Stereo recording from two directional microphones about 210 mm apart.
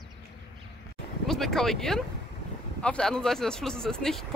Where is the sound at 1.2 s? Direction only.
Centre (ahead or behind).